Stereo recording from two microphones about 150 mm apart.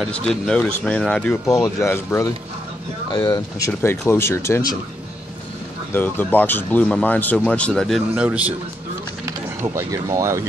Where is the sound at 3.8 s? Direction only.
15° left (ahead or behind).